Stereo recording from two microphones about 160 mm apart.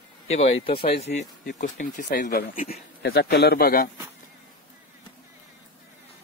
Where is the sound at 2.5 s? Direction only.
40° left (ahead or behind).